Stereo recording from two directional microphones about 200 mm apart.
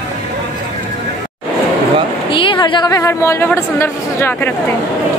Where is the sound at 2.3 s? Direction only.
25° left (ahead or behind).